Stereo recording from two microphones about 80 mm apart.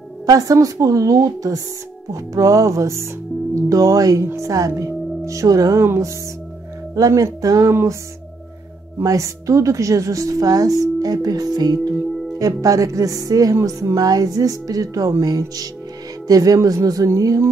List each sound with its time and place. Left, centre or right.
0.3 s speech: right
2.1 s music: right
3.6 s speech: right
5.9 s music: right
7.0 s speech: right
8.9 s speech: right